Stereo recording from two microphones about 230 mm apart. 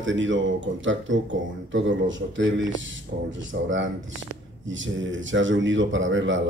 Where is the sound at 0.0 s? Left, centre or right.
Right.